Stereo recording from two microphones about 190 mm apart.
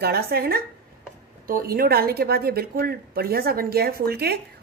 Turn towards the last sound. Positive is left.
turn(degrees=-55)  # may be behind; listen again after turning